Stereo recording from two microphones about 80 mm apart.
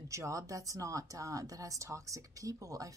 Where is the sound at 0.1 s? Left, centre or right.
Right.